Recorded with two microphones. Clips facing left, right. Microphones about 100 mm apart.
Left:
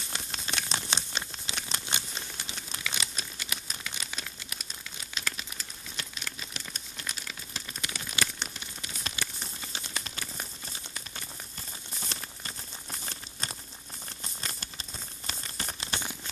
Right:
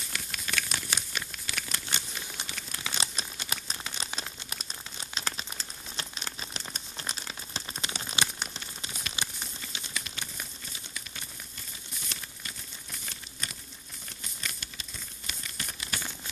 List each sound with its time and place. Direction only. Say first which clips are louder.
0.1 s crumpling: right 1 dB; 25° left (ahead or behind)
2.8 s crumpling: right 2 dB; 30° right (ahead or behind)
9.1 s a sound: left 1 dB; 35° left (ahead or behind)